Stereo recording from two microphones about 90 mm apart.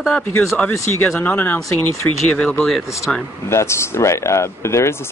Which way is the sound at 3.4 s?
30° left (ahead or behind).